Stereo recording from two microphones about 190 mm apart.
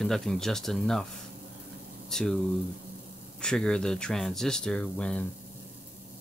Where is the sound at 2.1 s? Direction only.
Centre (ahead or behind).